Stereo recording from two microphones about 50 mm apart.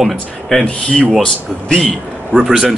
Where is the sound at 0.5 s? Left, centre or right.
Centre.